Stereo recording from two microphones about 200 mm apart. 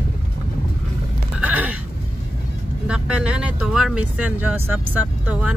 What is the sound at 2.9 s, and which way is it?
Speech, 5° right (ahead or behind).